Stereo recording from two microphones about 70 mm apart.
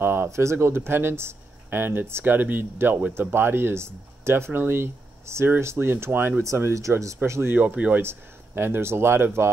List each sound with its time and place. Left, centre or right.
0.0 s speech: right
6.4 s speech: right
7.5 s speech: right
8.0 s speech: right